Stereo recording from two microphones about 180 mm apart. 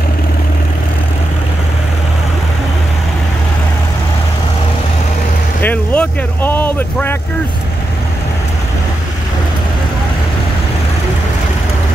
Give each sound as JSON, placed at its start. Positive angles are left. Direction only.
{"t": 5.6, "sound": "speech", "side_deg": 10}